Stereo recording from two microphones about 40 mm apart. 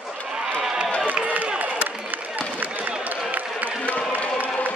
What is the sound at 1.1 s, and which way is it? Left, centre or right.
Run, right.